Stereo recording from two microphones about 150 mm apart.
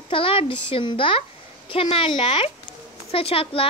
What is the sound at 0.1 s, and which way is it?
Speech, 35° left (ahead or behind).